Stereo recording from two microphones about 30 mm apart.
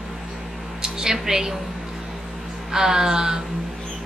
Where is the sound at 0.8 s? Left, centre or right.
Right.